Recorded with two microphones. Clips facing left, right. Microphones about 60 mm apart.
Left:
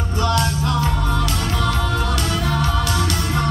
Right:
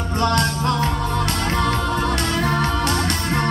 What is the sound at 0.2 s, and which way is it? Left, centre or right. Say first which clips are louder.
Music: right 1 dB; right.